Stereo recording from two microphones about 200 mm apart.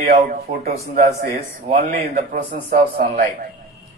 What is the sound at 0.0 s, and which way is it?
A man's voice, 50° right (ahead or behind).